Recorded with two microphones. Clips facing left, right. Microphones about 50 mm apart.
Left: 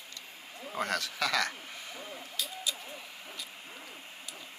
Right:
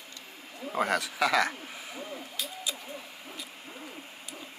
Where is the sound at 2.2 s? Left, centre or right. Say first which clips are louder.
Right 1 dB; centre.